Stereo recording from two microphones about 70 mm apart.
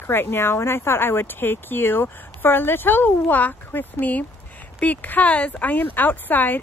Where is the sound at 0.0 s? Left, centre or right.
Left.